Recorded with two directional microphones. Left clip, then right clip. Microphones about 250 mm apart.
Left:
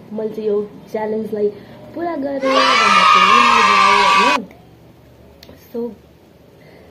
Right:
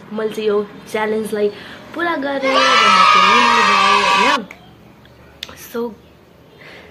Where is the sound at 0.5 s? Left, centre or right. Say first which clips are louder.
Even; centre.